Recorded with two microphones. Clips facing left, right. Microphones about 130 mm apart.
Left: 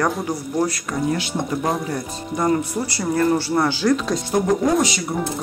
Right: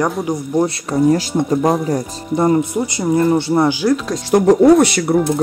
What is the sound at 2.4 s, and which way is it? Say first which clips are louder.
Speech: right 5 dB; 25° right (ahead or behind).